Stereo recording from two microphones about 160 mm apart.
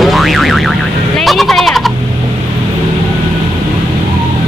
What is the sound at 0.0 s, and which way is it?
Boing, centre (ahead or behind).